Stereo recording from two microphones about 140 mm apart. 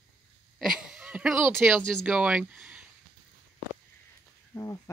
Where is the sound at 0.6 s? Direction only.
5° right (ahead or behind).